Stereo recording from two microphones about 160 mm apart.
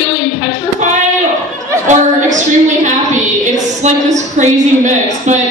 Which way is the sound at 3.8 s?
45° right (ahead or behind).